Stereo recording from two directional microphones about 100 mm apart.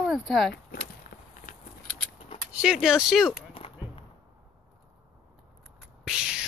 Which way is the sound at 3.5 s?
75° left (ahead or behind).